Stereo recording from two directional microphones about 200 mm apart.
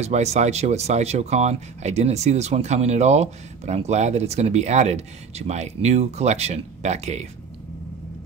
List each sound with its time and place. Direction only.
0.0 s speech: 35° right (ahead or behind)